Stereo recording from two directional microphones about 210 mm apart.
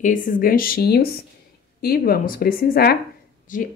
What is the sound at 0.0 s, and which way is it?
Speech, 40° left (ahead or behind).